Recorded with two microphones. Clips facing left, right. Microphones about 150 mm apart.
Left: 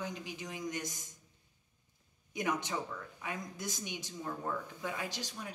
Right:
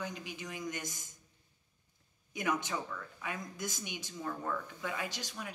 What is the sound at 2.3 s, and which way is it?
A woman's voice, 30° left (ahead or behind).